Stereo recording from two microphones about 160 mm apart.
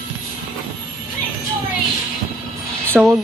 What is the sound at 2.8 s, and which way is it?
Music, 5° left (ahead or behind).